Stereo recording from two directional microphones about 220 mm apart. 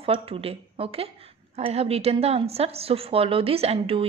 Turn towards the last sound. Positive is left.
turn(degrees=-25)  # may be behind; listen again after turning